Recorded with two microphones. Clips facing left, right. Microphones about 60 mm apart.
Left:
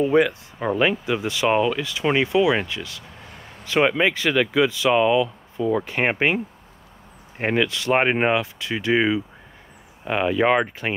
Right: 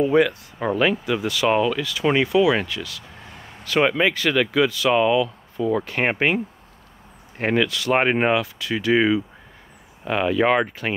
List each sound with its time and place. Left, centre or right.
0.0 s speech: centre
7.6 s speech: left
7.9 s speech: centre
8.4 s speech: left
8.9 s speech: centre